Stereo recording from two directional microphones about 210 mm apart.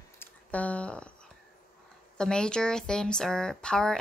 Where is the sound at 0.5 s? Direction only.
5° left (ahead or behind).